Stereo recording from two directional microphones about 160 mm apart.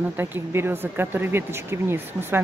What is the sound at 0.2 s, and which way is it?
Speech, 15° right (ahead or behind).